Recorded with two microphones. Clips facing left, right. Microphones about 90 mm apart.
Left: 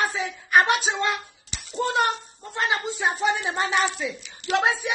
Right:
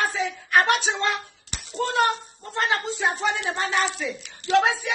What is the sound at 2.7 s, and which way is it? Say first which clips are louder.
Speech: even; 20° left (ahead or behind).